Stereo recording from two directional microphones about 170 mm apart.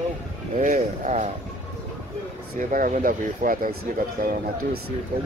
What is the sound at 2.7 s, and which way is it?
Speech, 50° right (ahead or behind).